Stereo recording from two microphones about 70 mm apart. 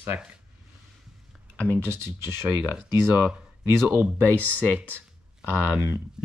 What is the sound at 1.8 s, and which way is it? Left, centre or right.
Speech, right.